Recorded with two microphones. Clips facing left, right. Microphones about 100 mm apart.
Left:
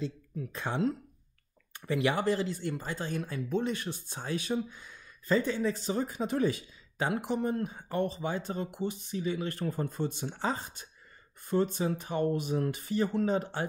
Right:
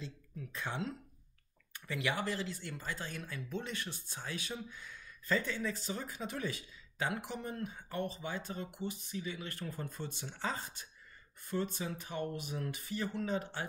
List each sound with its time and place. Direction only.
0.6 s speech: 45° left (ahead or behind)
1.7 s speech: 30° left (ahead or behind)
4.3 s speech: 30° left (ahead or behind)
9.9 s speech: 20° left (ahead or behind); by 13.7 s 35° left (ahead or behind)